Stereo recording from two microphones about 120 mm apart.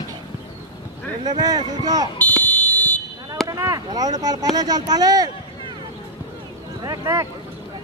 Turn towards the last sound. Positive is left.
turn(degrees=-30)  # may be behind; listen again after turning